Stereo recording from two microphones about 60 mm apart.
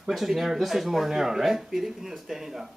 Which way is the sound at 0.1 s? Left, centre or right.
Centre.